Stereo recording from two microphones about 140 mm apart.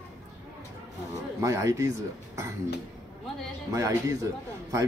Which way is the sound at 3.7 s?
20° right (ahead or behind).